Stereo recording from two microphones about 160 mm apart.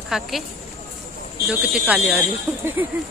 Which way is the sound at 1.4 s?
Centre (ahead or behind).